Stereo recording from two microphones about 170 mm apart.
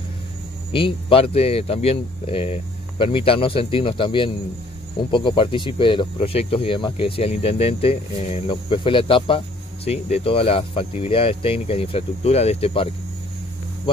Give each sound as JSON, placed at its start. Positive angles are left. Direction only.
{"t": 0.7, "sound": "speech", "side_deg": 30}